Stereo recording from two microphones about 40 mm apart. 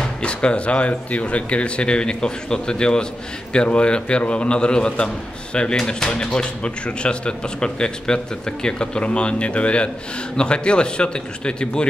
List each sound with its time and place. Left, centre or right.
0.2 s speech: left